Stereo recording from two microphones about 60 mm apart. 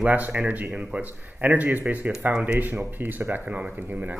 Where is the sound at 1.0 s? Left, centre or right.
Right.